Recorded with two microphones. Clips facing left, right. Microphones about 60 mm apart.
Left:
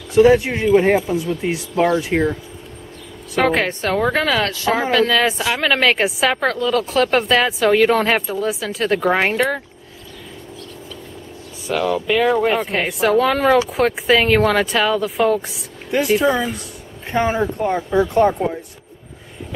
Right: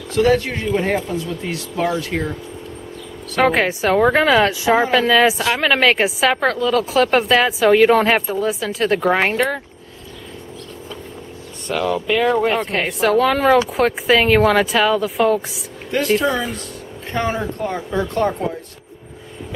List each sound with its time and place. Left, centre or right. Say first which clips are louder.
0.1 s speech: left 4 dB; centre
3.4 s a woman's voice: right 3 dB; centre
11.6 s a woman's voice: left 1 dB; centre